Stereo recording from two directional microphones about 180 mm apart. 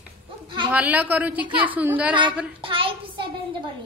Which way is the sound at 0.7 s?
10° right (ahead or behind).